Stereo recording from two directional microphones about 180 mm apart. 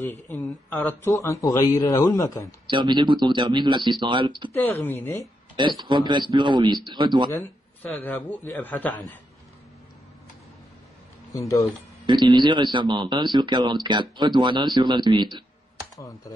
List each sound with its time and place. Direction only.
0.0 s a man's voice: 10° left (ahead or behind)
2.7 s speech: 25° right (ahead or behind)
4.8 s a man's voice: 15° left (ahead or behind)
5.6 s speech: 25° right (ahead or behind)
7.3 s a man's voice: 10° left (ahead or behind)
11.3 s speech: 20° left (ahead or behind)
12.1 s speech: 25° right (ahead or behind)